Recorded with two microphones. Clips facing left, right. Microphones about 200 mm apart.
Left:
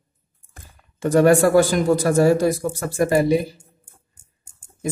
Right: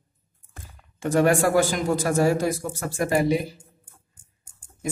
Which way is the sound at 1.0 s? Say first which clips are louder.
Left 5 dB; 35° left (ahead or behind).